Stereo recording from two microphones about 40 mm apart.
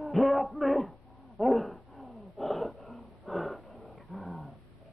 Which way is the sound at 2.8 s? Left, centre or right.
Left.